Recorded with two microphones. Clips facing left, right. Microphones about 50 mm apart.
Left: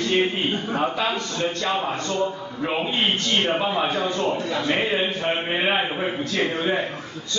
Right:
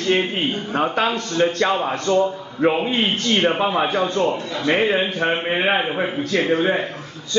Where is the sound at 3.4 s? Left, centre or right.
Right.